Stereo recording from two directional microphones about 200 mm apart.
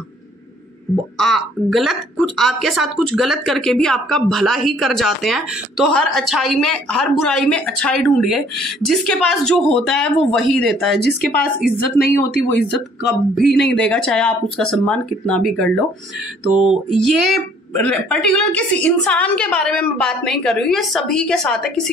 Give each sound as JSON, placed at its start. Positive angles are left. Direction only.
{"t": 1.1, "sound": "a woman's voice", "side_deg": 0}
{"t": 11.0, "sound": "a woman's voice", "side_deg": 50}
{"t": 13.5, "sound": "speech", "side_deg": 55}
{"t": 13.7, "sound": "a woman's voice", "side_deg": 5}